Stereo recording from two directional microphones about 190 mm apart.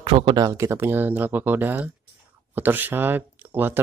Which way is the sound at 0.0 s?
25° right (ahead or behind).